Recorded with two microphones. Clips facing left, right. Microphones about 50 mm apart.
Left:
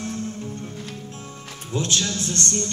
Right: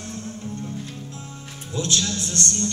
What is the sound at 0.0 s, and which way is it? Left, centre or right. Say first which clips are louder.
Music: left 4 dB; left.